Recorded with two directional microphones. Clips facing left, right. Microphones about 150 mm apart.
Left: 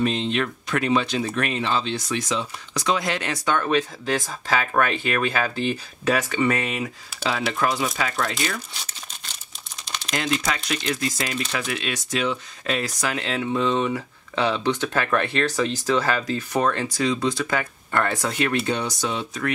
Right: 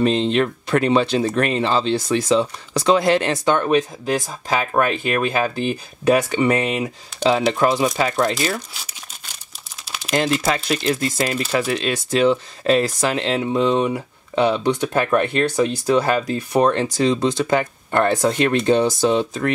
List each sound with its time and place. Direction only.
0.0 s speech: 35° right (ahead or behind)
8.7 s crumpling: 10° right (ahead or behind)
9.8 s a sound: 5° right (ahead or behind)
10.4 s speech: 35° right (ahead or behind); by 16.3 s 15° right (ahead or behind)
16.3 s speech: 30° right (ahead or behind)